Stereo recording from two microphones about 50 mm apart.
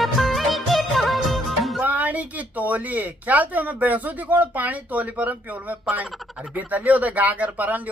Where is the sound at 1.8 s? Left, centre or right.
Right.